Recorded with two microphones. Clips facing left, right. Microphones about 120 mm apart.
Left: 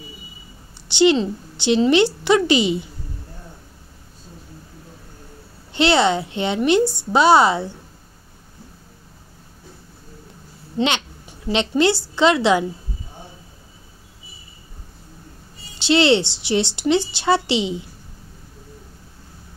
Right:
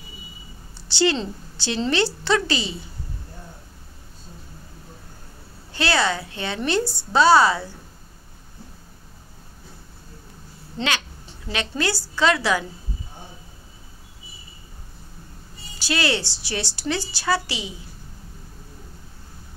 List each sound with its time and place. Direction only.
0.8 s a woman's voice: 20° left (ahead or behind)
5.7 s a woman's voice: 20° left (ahead or behind)
10.8 s a woman's voice: 20° left (ahead or behind)
15.8 s a woman's voice: 25° left (ahead or behind)